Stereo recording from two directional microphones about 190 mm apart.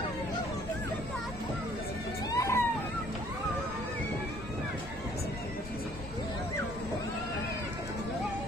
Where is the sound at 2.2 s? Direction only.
15° left (ahead or behind).